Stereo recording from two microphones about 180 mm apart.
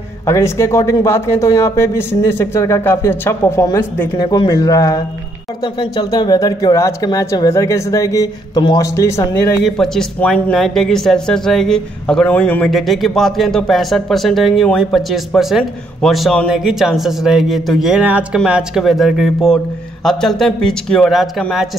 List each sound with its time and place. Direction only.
0.3 s speech: 15° left (ahead or behind)
9.7 s speech: 5° left (ahead or behind)